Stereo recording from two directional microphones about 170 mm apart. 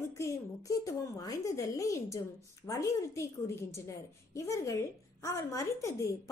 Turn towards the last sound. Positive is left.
turn(degrees=20)  # may be behind; listen again after turning